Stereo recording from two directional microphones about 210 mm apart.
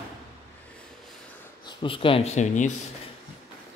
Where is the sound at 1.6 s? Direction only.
25° left (ahead or behind).